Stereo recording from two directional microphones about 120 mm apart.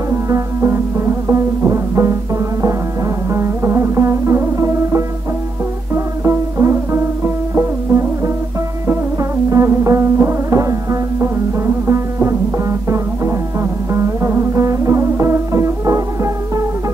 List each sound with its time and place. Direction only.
0.1 s music: 20° right (ahead or behind)
3.3 s music: 20° right (ahead or behind)
6.2 s music: 25° right (ahead or behind)
9.5 s music: 25° right (ahead or behind)
13.9 s music: 25° right (ahead or behind)